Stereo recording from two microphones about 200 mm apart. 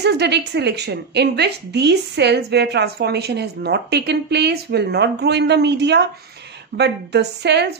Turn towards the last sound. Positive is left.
turn(degrees=-55)  # may be behind; listen again after turning